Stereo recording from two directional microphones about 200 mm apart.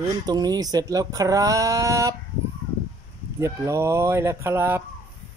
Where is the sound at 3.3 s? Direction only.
15° right (ahead or behind).